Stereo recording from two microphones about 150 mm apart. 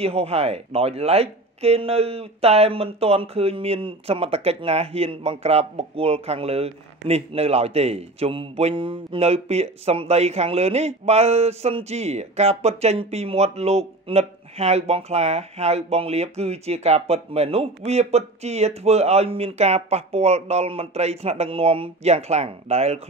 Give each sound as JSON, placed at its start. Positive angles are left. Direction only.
{"t": 0.0, "sound": "speech", "side_deg": -45}